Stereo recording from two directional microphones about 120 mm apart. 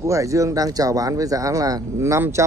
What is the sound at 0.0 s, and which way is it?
Speech, 25° right (ahead or behind).